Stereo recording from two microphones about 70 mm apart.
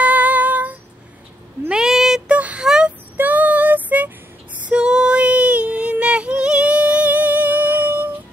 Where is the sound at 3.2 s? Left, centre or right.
Right.